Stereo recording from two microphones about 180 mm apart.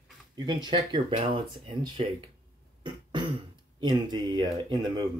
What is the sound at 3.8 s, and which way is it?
Speech, 25° right (ahead or behind).